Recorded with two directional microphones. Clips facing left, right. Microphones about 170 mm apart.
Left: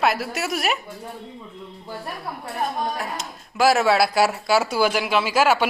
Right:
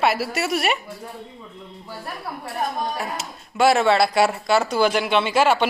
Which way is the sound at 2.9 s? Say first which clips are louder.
Right 1 dB; centre (ahead or behind).